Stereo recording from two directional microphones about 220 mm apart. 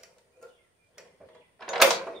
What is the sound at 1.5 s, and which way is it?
Drawer open or close, centre (ahead or behind).